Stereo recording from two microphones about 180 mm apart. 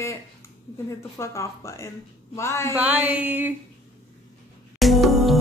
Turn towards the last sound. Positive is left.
turn(degrees=0)  # may be behind; listen again after turning